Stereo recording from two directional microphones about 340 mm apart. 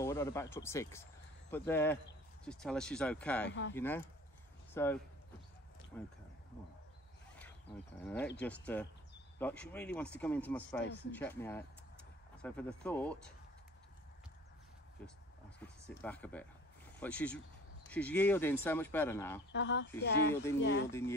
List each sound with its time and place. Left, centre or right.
0.0 s speech: centre
3.4 s speech: left
3.7 s speech: centre
5.9 s speech: centre
8.0 s speech: centre
15.0 s speech: centre
19.5 s speech: left